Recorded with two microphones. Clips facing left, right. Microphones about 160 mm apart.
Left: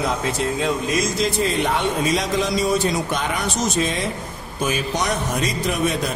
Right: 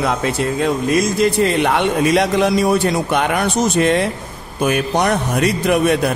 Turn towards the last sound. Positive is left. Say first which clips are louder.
# right 7 dB
turn(degrees=-65)  # may be behind; listen again after turning